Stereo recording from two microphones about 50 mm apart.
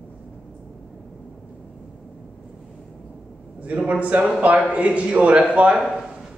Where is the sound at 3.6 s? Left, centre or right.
Right.